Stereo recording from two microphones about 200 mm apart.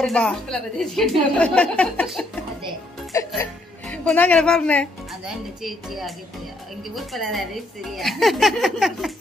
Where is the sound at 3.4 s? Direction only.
5° left (ahead or behind).